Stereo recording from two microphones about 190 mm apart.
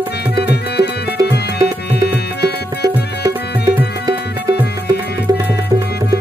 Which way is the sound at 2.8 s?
20° right (ahead or behind).